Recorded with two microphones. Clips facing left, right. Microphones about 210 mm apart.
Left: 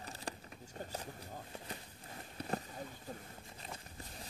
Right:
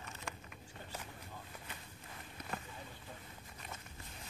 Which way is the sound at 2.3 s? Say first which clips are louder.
Left 6 dB; 35° left (ahead or behind).